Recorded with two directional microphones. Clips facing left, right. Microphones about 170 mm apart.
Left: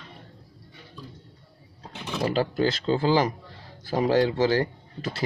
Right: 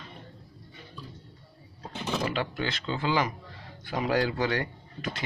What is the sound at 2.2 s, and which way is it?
Speech, 35° left (ahead or behind).